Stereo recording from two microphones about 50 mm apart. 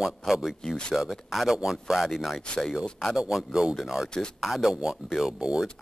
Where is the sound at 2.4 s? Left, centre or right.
Centre.